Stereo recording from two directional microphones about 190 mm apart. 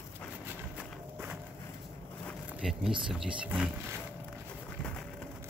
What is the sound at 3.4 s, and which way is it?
Speech, centre (ahead or behind).